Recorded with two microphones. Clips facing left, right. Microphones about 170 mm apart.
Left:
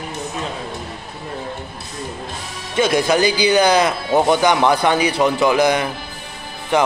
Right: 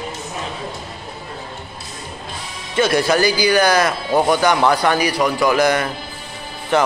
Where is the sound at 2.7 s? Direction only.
15° left (ahead or behind).